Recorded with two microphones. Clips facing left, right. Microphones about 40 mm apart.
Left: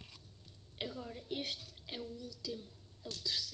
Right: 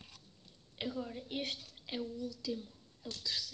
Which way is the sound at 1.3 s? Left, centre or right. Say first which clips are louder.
Right 1 dB; right.